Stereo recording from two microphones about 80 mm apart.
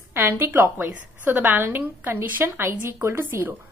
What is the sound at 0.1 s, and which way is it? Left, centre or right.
A woman's voice, right.